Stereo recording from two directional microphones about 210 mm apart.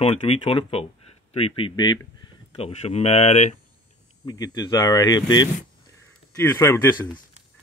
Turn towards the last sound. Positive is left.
turn(degrees=15)  # may be behind; listen again after turning